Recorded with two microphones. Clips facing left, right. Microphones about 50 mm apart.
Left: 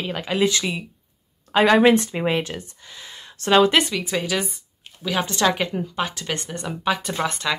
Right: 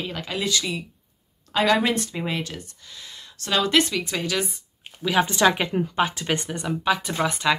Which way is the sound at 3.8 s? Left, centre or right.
Centre.